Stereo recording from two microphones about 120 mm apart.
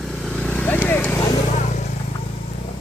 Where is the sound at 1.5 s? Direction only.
85° left.